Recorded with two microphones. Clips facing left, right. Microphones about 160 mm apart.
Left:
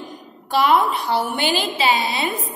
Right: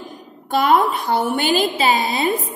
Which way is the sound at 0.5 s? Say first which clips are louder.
Right 1 dB; 45° right (ahead or behind).